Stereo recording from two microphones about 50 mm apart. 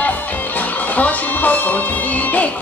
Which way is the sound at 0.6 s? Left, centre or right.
Left.